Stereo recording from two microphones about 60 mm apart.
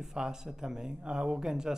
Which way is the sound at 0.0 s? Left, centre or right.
Centre.